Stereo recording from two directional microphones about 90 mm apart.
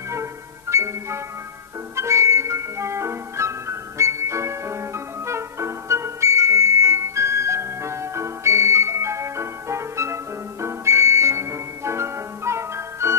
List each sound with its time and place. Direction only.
0.1 s music: 30° right (ahead or behind)